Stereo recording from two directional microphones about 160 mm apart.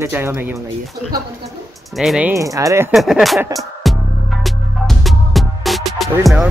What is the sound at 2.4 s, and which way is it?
Speech, 20° right (ahead or behind).